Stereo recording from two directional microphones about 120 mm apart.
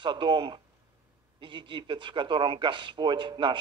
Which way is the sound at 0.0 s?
40° right (ahead or behind).